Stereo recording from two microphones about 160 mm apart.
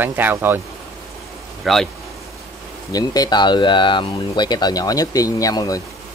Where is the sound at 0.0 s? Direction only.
10° right (ahead or behind).